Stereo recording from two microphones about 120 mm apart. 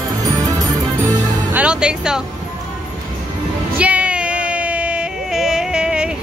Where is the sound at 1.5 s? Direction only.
10° right (ahead or behind).